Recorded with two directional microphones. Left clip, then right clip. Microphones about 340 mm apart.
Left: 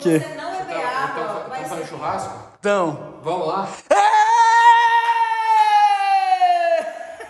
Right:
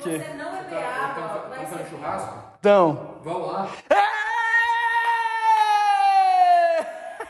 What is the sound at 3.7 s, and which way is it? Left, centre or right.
Female singing, centre.